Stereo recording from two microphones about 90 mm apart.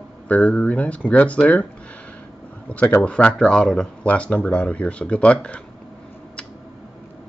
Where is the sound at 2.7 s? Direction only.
15° left (ahead or behind).